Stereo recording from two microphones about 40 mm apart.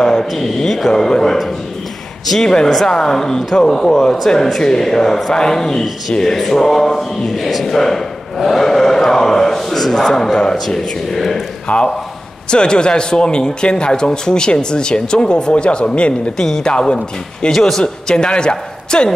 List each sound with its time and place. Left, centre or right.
0.0 s mantra: centre
0.6 s speech: centre
2.4 s speech: centre
11.7 s a man's voice: left
12.4 s a man's voice: left
16.3 s speech: centre